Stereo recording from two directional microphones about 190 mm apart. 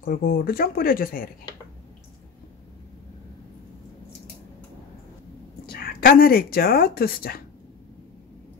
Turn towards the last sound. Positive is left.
turn(degrees=50)  # may be behind; listen again after turning